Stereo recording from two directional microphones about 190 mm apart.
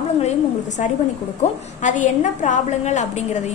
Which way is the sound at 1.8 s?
40° left (ahead or behind).